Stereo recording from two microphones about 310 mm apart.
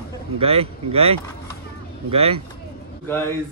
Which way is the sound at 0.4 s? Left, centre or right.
Centre.